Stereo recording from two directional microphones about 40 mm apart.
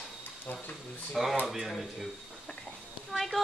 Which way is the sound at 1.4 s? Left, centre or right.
Centre.